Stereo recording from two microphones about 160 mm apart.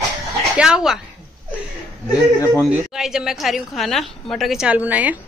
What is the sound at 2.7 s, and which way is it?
A woman's voice, 5° right (ahead or behind).